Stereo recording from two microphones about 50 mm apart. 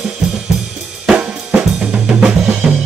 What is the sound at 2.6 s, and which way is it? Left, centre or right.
Music, centre.